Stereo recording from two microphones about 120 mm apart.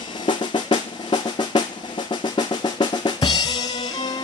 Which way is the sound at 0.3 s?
40° left (ahead or behind).